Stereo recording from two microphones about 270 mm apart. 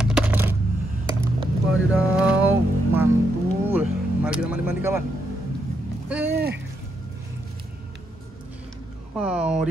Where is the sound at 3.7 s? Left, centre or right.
Centre.